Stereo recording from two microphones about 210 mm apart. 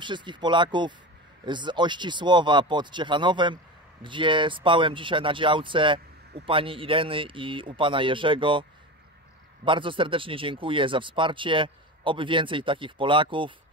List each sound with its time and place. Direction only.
0.0 s speech: 20° right (ahead or behind)
9.7 s speech: 25° right (ahead or behind)